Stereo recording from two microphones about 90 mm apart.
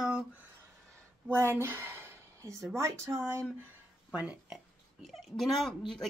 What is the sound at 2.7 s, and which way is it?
Speech, 35° right (ahead or behind).